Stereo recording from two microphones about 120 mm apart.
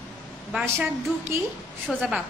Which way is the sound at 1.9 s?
Centre (ahead or behind).